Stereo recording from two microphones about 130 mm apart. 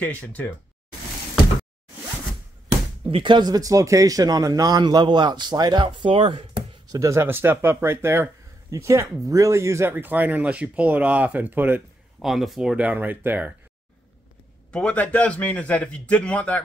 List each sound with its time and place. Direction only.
0.0 s a man's voice: 10° left (ahead or behind)
3.1 s speech: 40° right (ahead or behind)
7.0 s speech: 20° right (ahead or behind)
12.2 s speech: centre (ahead or behind)
14.7 s a man's voice: 10° left (ahead or behind)